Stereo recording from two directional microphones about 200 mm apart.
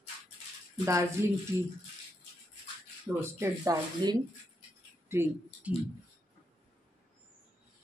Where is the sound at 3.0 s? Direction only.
15° right (ahead or behind).